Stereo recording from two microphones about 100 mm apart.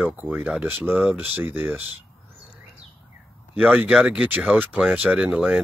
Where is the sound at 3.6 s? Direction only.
15° right (ahead or behind).